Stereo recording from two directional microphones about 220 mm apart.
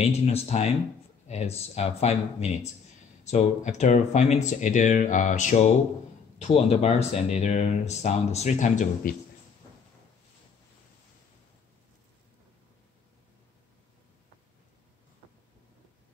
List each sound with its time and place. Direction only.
0.0 s speech: 30° left (ahead or behind)